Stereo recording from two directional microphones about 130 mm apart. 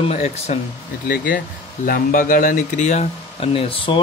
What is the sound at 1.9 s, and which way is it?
Speech, 90° left.